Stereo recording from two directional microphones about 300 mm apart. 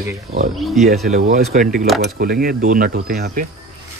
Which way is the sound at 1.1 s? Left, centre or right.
Right.